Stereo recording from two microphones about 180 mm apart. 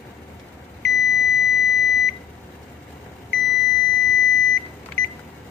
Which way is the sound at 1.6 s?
80° left.